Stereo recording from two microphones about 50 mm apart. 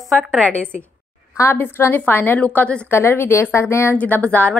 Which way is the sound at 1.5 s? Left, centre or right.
Left.